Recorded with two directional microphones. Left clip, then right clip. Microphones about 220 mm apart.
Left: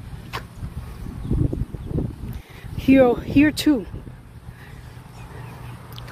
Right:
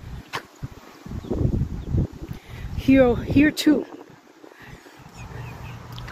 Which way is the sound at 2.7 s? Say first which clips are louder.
Left 2 dB; 20° left (ahead or behind).